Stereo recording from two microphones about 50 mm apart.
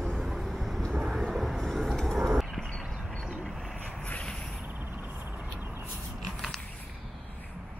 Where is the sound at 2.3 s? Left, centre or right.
Centre.